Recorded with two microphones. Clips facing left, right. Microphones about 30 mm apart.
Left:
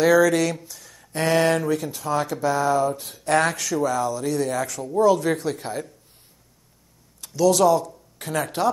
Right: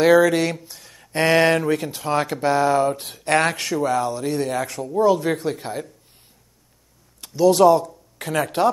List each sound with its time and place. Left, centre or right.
0.0 s speech: right
0.7 s a sound: right
1.1 s speech: right
4.2 s speech: right
4.8 s speech: centre
7.2 s a sound: right
7.5 s speech: right